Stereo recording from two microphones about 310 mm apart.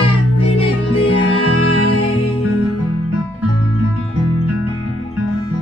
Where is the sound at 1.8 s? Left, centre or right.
Left.